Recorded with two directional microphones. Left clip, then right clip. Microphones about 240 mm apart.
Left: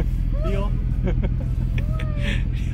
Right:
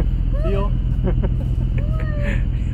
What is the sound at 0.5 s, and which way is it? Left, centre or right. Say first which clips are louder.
Vehicle: right 5 dB; left.